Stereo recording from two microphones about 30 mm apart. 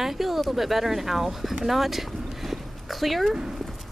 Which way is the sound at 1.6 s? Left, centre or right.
Centre.